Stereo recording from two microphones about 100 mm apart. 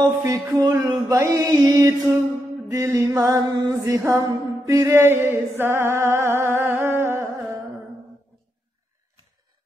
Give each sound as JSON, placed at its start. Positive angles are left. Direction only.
{"t": 0.2, "sound": "music", "side_deg": -30}
{"t": 3.3, "sound": "music", "side_deg": -45}
{"t": 3.8, "sound": "mantra", "side_deg": -30}